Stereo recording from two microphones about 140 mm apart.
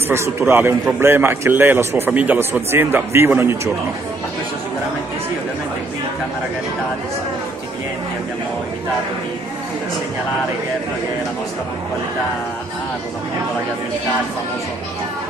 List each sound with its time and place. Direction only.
0.1 s a man's voice: 20° right (ahead or behind)